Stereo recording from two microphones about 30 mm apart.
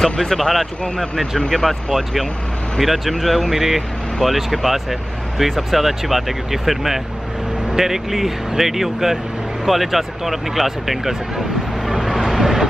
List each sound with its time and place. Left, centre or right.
0.0 s speech: centre
12.3 s vehicle: centre